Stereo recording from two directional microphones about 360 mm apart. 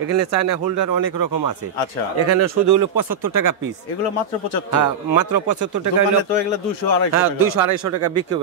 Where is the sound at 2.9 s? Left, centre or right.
Left.